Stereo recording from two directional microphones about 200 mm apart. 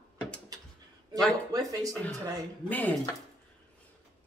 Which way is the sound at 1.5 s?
15° right (ahead or behind).